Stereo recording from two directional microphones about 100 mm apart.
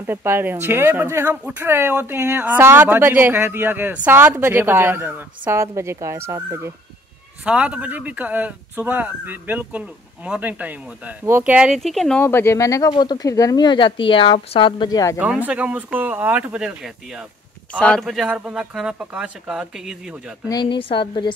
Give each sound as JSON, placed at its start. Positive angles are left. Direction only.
{"t": 0.0, "sound": "speech", "side_deg": -25}
{"t": 7.4, "sound": "speech", "side_deg": -10}
{"t": 11.8, "sound": "speech", "side_deg": 0}
{"t": 12.2, "sound": "speech", "side_deg": 25}
{"t": 12.9, "sound": "speech", "side_deg": 45}
{"t": 14.9, "sound": "speech", "side_deg": 35}
{"t": 15.1, "sound": "speech", "side_deg": -15}
{"t": 17.7, "sound": "speech", "side_deg": 10}
{"t": 20.6, "sound": "speech", "side_deg": 55}